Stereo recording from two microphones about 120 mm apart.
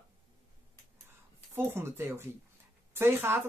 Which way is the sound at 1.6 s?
20° right (ahead or behind).